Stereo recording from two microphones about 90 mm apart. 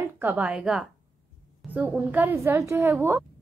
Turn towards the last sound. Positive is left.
turn(degrees=-25)  # may be behind; listen again after turning